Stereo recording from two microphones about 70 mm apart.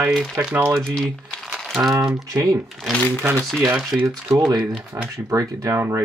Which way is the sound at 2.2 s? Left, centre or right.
Right.